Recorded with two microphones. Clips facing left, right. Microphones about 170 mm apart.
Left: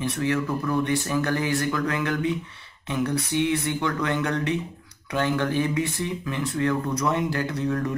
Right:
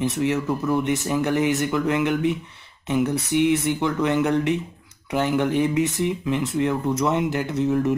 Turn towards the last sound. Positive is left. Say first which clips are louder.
# right 5 dB
turn(degrees=-20)  # may be behind; listen again after turning